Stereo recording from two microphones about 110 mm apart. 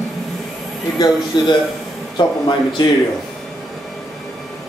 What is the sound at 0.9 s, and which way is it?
A man's voice, 35° left (ahead or behind).